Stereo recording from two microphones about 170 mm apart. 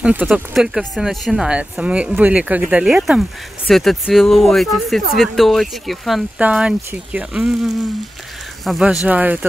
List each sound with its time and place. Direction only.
0.0 s speech: 10° right (ahead or behind)